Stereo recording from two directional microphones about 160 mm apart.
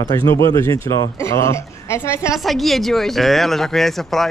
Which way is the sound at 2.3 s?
Centre (ahead or behind).